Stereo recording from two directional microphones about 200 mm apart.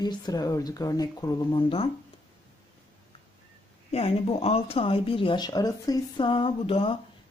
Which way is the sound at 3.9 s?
30° left (ahead or behind).